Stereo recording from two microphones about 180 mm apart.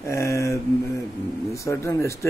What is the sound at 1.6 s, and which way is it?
Speech, 15° left (ahead or behind).